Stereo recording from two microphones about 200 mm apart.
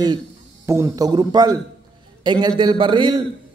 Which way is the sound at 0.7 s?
15° right (ahead or behind).